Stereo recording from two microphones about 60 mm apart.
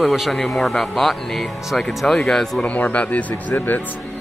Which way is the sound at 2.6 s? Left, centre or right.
Left.